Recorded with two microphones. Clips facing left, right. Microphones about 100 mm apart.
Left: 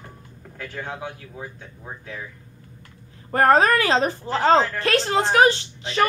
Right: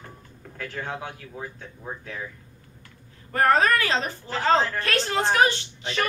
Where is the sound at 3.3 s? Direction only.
35° left (ahead or behind).